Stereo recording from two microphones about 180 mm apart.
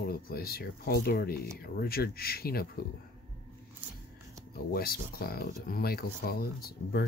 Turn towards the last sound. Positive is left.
turn(degrees=60)  # may be behind; listen again after turning